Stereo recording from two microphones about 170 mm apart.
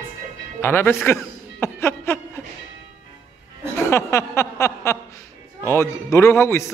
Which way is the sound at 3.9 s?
15° left (ahead or behind).